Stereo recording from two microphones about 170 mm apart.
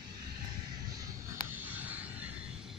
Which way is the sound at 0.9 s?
20° right (ahead or behind).